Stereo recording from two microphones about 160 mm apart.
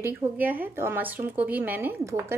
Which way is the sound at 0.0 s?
15° right (ahead or behind).